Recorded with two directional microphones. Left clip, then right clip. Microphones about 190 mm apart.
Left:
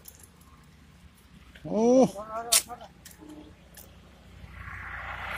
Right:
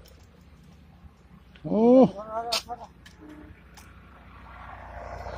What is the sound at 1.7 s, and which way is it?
Speech, 5° right (ahead or behind).